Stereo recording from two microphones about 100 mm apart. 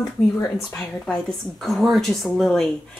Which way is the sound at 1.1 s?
Centre (ahead or behind).